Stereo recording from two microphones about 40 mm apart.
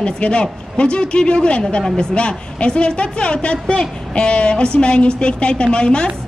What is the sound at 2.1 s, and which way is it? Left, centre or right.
A woman's voice, left.